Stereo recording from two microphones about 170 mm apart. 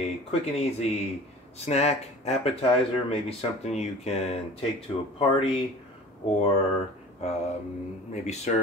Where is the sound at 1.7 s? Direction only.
40° left (ahead or behind).